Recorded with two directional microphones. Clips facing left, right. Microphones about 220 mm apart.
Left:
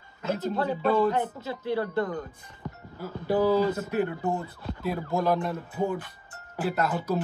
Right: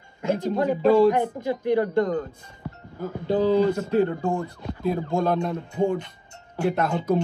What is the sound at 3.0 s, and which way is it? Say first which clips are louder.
Speech: right 2 dB; 20° right (ahead or behind).